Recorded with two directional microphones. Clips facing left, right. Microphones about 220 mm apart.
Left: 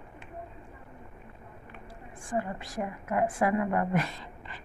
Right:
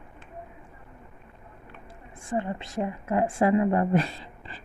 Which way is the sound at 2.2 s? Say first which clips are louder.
Right 3 dB; 25° right (ahead or behind).